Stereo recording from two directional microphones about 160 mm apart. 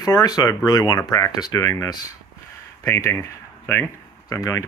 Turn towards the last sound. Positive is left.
turn(degrees=20)  # may be behind; listen again after turning